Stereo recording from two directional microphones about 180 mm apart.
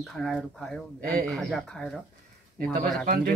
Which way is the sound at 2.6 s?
50° right (ahead or behind).